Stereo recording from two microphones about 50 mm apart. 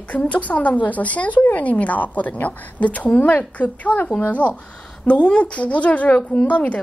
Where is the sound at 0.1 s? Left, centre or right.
Left.